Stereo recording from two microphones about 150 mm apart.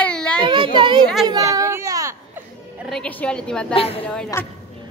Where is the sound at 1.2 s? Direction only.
25° right (ahead or behind).